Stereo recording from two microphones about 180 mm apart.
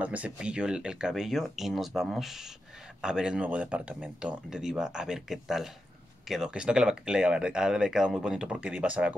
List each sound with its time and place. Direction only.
0.0 s speech: 10° right (ahead or behind)